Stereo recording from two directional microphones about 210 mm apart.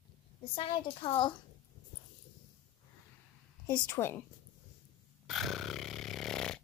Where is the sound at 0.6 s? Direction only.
25° left (ahead or behind).